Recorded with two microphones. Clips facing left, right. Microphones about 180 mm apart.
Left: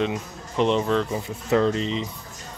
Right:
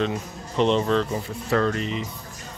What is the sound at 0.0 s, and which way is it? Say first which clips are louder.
Speech: even; 10° left (ahead or behind).